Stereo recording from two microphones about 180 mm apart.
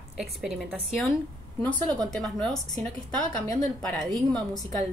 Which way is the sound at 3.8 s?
Centre (ahead or behind).